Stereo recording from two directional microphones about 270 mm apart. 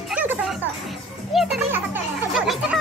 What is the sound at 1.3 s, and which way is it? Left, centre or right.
Children playing, centre.